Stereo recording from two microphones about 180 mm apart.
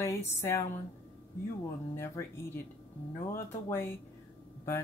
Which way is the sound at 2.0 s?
15° left (ahead or behind).